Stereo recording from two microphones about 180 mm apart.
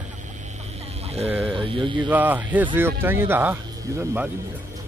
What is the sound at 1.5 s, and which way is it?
Speech, 30° right (ahead or behind).